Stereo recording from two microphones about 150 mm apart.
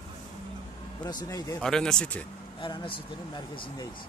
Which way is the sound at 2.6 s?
35° left (ahead or behind).